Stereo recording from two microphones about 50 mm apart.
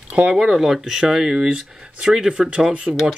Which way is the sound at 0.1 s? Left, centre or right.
Right.